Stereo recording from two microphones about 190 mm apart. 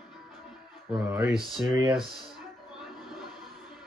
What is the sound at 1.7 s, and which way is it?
Speech, 20° right (ahead or behind).